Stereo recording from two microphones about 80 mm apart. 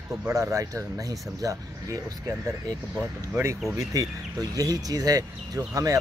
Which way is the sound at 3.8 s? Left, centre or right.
Right.